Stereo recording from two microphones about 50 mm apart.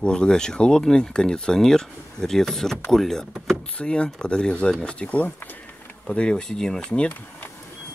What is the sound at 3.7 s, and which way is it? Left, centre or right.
Speech, left.